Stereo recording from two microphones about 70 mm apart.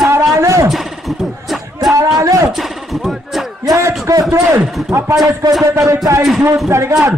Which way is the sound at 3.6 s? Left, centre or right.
Right.